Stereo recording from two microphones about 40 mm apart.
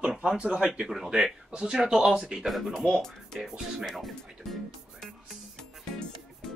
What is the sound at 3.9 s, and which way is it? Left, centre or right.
Music, centre.